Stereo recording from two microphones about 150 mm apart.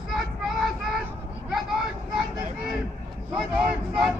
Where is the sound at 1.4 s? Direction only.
5° right (ahead or behind).